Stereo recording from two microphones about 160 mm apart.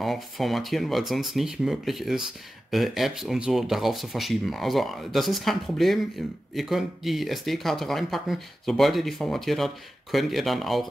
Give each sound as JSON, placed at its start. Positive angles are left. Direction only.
{"t": 0.0, "sound": "speech", "side_deg": 0}